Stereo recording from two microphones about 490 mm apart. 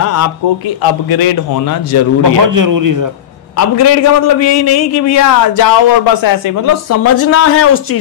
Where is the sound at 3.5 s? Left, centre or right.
Left.